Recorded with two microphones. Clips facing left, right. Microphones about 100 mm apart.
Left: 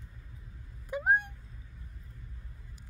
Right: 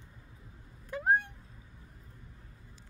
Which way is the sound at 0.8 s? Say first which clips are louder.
Even; 10° left (ahead or behind).